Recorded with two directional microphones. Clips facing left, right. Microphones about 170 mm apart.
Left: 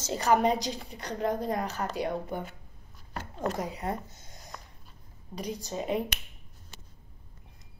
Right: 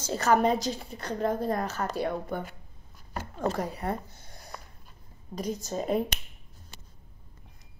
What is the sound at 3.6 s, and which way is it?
Speech, 20° left (ahead or behind).